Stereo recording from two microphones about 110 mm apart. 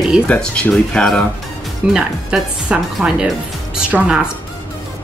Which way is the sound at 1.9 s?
5° right (ahead or behind).